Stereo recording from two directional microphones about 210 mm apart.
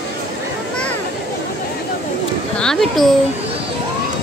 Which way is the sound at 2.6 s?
Centre (ahead or behind).